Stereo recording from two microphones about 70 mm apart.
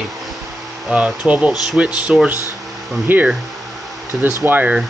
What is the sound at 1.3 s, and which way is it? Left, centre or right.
Speech, centre.